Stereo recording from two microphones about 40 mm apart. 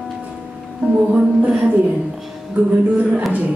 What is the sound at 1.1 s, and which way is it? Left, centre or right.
Speech, right.